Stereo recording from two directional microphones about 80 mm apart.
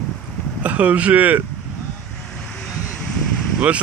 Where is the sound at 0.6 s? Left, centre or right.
Centre.